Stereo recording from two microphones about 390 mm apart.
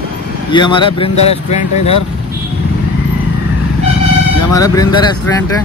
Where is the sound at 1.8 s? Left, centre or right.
Left.